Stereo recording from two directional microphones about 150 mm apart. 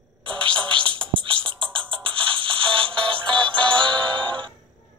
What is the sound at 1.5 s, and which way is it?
Music, 35° right (ahead or behind).